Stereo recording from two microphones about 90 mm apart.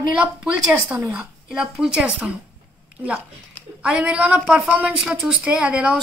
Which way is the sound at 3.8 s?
10° right (ahead or behind).